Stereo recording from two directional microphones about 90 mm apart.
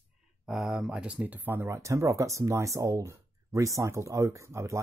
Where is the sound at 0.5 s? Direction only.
5° right (ahead or behind).